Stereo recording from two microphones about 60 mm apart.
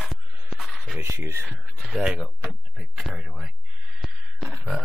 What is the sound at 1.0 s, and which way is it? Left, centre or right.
Speech, right.